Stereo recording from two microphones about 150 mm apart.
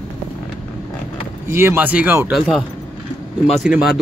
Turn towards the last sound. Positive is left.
turn(degrees=-5)  # may be behind; listen again after turning